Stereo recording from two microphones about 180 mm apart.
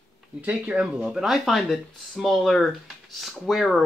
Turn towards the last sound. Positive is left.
turn(degrees=0)  # may be behind; listen again after turning